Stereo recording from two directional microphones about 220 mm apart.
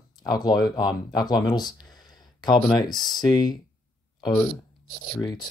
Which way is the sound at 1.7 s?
20° left (ahead or behind).